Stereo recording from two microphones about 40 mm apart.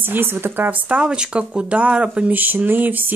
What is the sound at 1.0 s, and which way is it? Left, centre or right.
Speech, right.